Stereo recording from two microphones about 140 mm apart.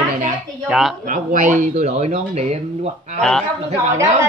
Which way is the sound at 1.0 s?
65° right (ahead or behind).